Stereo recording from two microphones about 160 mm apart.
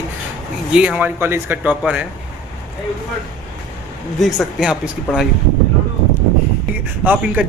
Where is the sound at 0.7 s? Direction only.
5° right (ahead or behind).